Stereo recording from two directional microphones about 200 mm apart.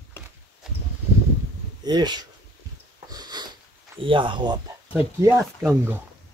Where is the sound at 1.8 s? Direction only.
20° right (ahead or behind).